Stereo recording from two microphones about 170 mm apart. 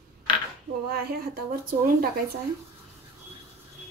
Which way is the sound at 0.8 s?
65° right (ahead or behind).